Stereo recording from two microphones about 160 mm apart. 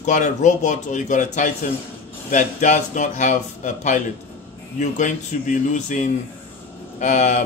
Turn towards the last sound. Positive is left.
turn(degrees=50)  # may be behind; listen again after turning